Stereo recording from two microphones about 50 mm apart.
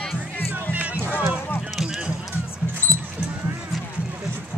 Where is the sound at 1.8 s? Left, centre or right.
Centre.